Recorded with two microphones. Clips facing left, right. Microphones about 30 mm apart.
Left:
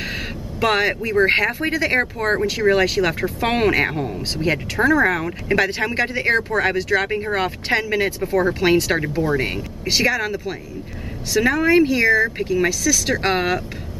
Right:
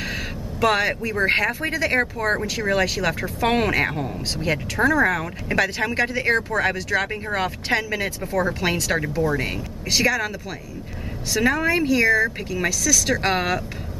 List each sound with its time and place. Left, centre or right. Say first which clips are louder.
0.0 s speech: left 1 dB; centre
11.6 s speech: left 6 dB; centre